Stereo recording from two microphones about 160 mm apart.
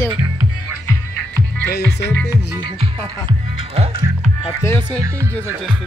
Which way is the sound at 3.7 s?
35° right (ahead or behind).